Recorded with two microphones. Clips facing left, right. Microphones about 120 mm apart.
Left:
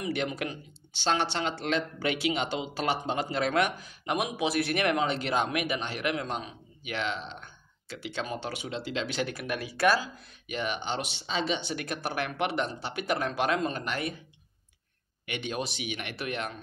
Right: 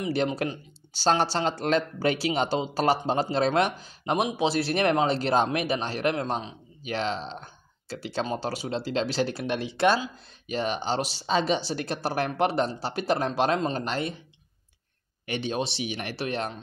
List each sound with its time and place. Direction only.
0.0 s speech: 30° right (ahead or behind)
15.2 s speech: 30° right (ahead or behind)